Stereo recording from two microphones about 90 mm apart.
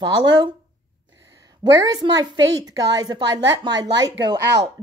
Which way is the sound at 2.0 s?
50° right (ahead or behind).